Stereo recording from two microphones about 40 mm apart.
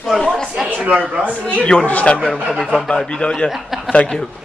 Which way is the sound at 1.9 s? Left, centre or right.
Left.